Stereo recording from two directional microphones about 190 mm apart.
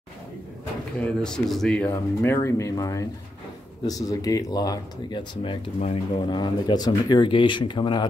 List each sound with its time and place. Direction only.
0.9 s speech: 5° left (ahead or behind); by 5.6 s 25° left (ahead or behind)
5.8 s speech: 35° left (ahead or behind)
6.2 s speech: 25° left (ahead or behind)